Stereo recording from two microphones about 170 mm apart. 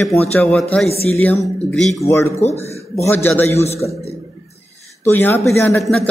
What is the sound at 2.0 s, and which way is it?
Speech, 15° left (ahead or behind).